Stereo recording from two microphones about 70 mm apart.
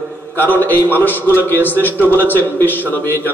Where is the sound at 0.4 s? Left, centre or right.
Left.